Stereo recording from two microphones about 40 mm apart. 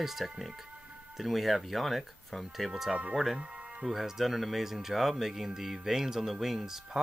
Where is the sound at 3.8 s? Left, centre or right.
Centre.